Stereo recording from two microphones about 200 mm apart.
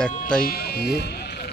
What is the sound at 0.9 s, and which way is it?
Sheep, 55° left (ahead or behind).